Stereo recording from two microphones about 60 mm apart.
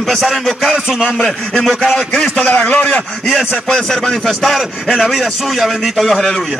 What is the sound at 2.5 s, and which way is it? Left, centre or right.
Speech, left.